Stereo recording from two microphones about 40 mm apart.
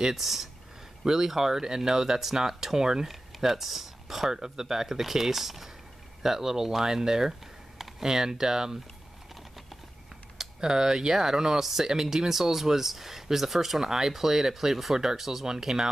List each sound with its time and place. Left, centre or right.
0.1 s speech: centre
10.3 s speech: centre